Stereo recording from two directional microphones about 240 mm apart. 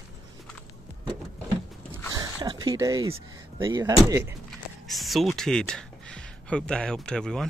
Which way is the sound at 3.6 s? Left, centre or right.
Centre.